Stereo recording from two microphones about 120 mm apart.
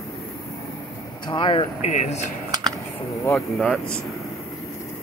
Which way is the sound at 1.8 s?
70° left (ahead or behind).